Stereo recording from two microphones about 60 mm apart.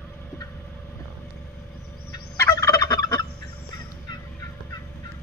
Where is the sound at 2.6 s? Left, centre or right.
Left.